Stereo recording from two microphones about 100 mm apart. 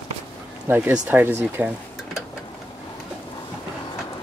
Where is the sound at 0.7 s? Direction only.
15° right (ahead or behind).